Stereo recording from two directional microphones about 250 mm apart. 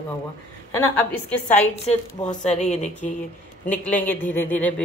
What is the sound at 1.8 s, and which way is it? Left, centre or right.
Speech, left.